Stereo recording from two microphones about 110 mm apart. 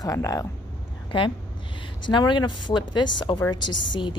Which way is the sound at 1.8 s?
45° left (ahead or behind).